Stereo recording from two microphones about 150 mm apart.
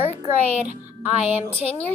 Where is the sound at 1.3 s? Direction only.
15° right (ahead or behind).